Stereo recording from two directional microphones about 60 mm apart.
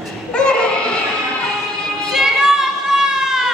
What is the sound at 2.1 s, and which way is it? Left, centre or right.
Children playing, centre.